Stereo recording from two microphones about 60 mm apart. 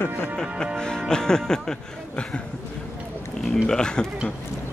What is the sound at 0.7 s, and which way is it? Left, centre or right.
Speech, centre.